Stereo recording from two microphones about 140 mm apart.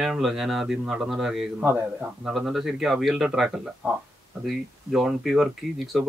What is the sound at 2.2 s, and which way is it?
Speech, centre (ahead or behind).